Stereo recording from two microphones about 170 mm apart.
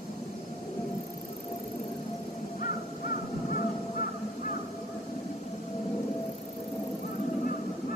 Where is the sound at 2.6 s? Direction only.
50° left (ahead or behind).